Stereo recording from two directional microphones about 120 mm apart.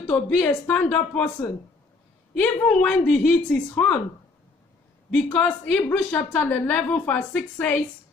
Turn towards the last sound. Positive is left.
turn(degrees=10)  # may be behind; listen again after turning